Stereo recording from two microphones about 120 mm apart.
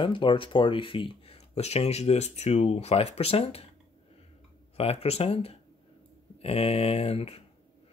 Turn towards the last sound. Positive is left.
turn(degrees=55)  # may be behind; listen again after turning